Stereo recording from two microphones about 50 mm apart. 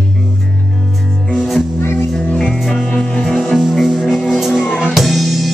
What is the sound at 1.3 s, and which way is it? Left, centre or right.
Music, centre.